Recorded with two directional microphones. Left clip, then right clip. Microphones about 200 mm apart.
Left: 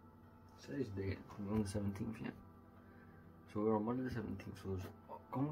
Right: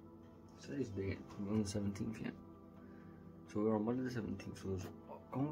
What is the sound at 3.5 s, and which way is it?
Speech, 15° right (ahead or behind).